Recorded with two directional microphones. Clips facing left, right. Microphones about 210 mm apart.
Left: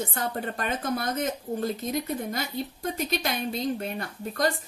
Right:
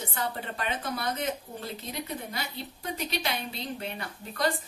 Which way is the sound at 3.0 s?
45° left (ahead or behind).